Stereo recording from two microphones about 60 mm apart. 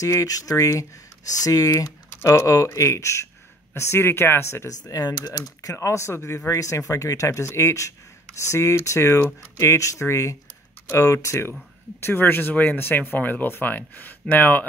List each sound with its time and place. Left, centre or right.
0.0 s speech: left
1.4 s speech: left
2.0 s speech: left
4.6 s speech: left
5.6 s speech: left
7.2 s speech: left
12.0 s speech: left